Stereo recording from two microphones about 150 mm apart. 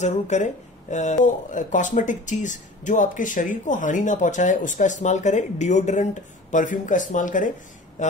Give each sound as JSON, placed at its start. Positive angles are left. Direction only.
{"t": 0.0, "sound": "speech", "side_deg": 50}